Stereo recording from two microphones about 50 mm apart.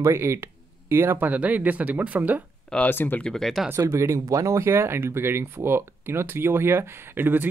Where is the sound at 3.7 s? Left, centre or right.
Right.